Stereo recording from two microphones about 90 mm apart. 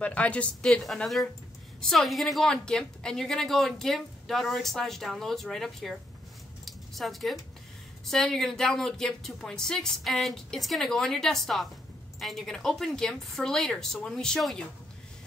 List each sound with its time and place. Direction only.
0.0 s speech: 15° left (ahead or behind)
0.7 s a woman's voice: 5° left (ahead or behind)
6.6 s a sound: centre (ahead or behind)
8.0 s a woman's voice: 5° left (ahead or behind)